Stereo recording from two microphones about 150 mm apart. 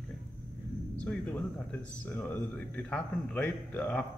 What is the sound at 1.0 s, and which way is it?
Speech, 10° left (ahead or behind).